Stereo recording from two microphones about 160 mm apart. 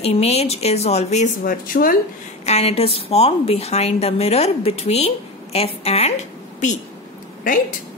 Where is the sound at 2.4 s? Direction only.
40° left (ahead or behind).